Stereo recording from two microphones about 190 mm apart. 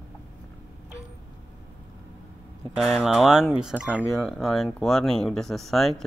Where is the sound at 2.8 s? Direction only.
Centre (ahead or behind).